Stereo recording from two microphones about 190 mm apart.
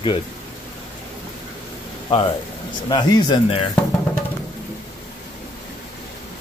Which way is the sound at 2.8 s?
20° left (ahead or behind).